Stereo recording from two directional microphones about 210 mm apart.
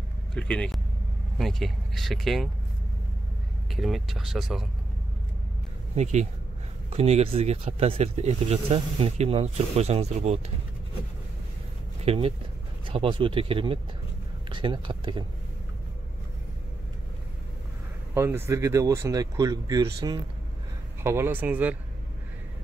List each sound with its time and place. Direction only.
0.3 s speech: 5° left (ahead or behind)
3.7 s speech: centre (ahead or behind)
6.9 s speech: 30° right (ahead or behind)
12.0 s speech: 30° right (ahead or behind)
18.1 s speech: 10° right (ahead or behind)
21.0 s speech: 10° right (ahead or behind)